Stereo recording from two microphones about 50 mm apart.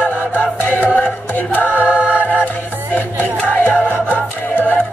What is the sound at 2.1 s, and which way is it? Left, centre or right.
Music, left.